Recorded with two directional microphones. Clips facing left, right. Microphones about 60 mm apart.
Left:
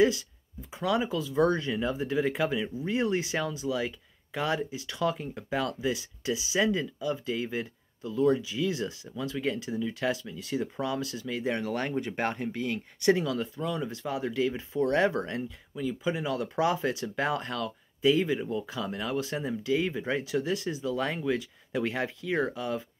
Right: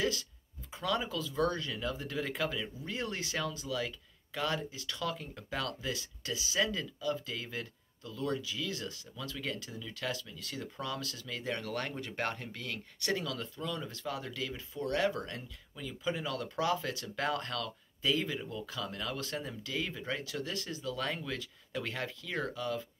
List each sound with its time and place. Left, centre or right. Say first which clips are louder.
0.0 s speech: left 10 dB; centre
15.7 s speech: left 6 dB; centre